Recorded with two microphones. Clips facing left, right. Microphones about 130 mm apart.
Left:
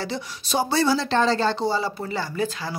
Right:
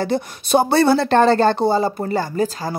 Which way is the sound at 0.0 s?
55° right (ahead or behind).